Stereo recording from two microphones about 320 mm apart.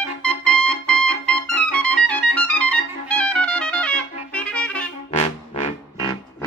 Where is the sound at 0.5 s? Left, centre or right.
Left.